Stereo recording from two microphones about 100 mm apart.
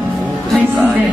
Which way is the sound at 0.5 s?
15° right (ahead or behind).